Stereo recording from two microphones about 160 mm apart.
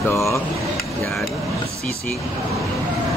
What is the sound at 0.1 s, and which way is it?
Speech, 20° left (ahead or behind).